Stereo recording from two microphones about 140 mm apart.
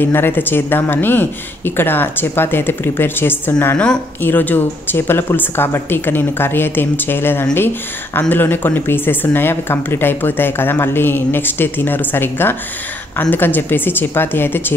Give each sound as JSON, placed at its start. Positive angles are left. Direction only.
{"t": 0.0, "sound": "a woman's voice", "side_deg": 15}